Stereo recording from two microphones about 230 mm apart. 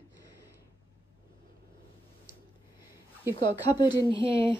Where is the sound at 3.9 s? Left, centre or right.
Right.